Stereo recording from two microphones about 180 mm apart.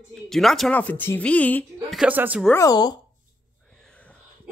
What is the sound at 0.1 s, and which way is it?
A woman's voice, centre (ahead or behind).